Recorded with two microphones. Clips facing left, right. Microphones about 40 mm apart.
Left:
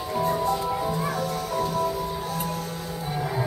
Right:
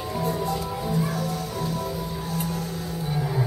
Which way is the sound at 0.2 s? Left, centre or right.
Left.